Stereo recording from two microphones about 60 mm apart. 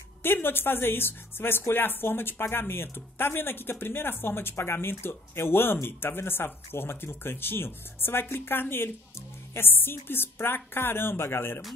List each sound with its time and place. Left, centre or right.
0.2 s speech: left